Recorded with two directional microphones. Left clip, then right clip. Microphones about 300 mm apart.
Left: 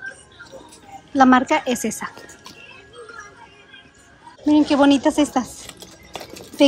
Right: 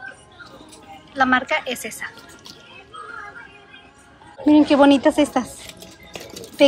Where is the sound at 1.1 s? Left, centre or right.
Centre.